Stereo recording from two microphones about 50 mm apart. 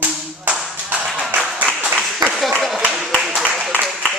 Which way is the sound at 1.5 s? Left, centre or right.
Centre.